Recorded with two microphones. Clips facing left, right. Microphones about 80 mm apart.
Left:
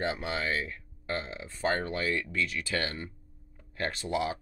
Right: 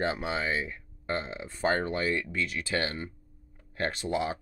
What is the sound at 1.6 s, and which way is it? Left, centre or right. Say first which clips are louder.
Speech: right 2 dB; right.